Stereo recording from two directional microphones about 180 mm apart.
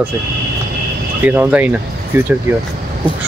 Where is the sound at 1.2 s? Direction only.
10° right (ahead or behind).